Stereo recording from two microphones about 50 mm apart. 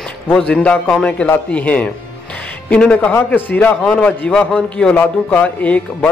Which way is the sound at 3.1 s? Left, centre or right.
Left.